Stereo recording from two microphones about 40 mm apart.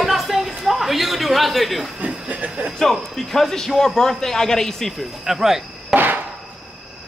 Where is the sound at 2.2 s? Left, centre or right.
Right.